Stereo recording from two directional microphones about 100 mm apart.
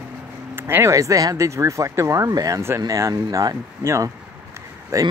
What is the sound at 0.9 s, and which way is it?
Speech, 35° right (ahead or behind).